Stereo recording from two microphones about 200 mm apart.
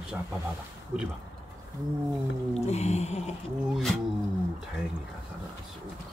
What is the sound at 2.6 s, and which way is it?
Speech, 35° left (ahead or behind).